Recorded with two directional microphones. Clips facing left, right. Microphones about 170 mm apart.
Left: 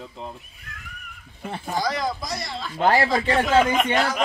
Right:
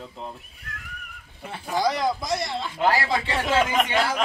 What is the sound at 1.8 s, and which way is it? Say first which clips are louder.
Speech: right 3 dB; 25° right (ahead or behind).